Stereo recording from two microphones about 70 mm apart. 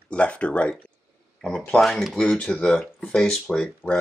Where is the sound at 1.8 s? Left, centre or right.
Centre.